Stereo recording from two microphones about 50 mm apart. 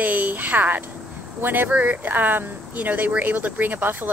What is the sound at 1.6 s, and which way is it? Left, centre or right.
Speech, right.